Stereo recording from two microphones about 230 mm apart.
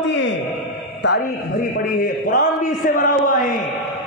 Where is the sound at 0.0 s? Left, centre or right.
Left.